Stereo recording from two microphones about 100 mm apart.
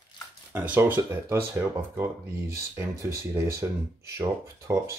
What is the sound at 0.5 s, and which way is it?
Speech, 15° right (ahead or behind).